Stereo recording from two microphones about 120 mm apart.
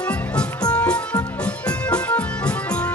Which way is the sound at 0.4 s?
10° left (ahead or behind).